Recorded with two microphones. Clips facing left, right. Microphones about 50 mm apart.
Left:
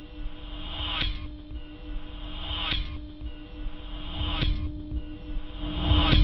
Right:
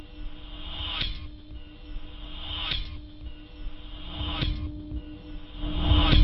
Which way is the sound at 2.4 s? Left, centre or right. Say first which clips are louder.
Left 2 dB; centre.